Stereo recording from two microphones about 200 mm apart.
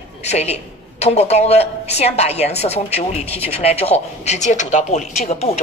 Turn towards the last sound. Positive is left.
turn(degrees=30)  # may be behind; listen again after turning